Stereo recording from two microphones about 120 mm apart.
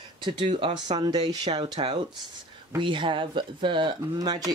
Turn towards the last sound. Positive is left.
turn(degrees=-35)  # may be behind; listen again after turning